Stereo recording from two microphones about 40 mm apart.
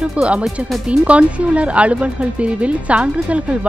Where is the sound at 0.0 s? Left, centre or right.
Right.